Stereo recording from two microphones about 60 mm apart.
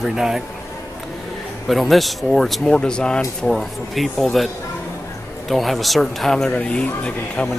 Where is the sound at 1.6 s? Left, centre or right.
Centre.